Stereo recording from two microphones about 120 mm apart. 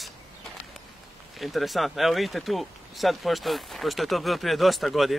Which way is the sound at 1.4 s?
Centre (ahead or behind).